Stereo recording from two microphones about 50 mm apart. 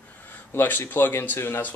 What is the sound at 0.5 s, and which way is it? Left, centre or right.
Speech, left.